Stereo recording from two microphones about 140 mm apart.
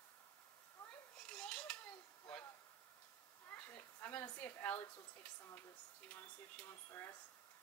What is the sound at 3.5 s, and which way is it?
Snake, 15° left (ahead or behind).